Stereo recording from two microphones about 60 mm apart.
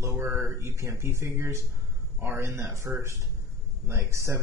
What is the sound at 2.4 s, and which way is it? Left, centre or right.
Speech, right.